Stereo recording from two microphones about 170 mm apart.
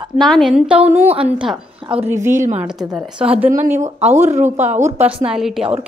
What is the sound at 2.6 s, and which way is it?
Speech, 5° right (ahead or behind).